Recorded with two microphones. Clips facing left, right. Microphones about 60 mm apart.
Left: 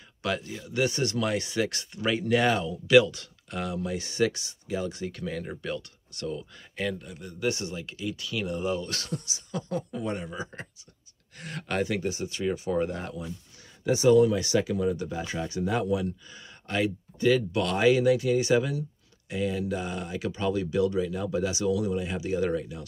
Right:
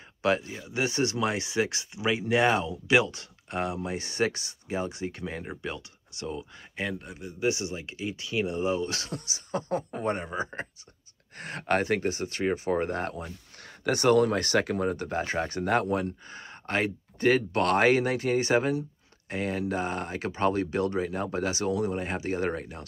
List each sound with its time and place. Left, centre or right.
0.2 s speech: right
9.3 s speech: right
13.8 s speech: right